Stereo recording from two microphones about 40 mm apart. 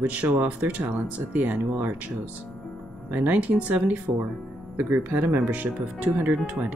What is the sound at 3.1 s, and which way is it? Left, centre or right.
Speech, right.